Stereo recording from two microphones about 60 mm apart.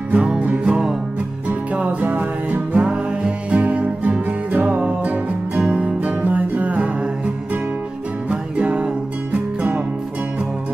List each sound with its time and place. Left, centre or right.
0.1 s music: centre
8.3 s music: centre
9.3 s music: right